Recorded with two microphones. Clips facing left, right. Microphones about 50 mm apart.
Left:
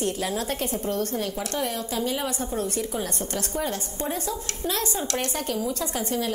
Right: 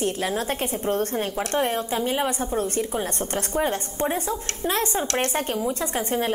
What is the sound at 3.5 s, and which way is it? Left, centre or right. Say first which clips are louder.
A woman's voice: right 6 dB; right.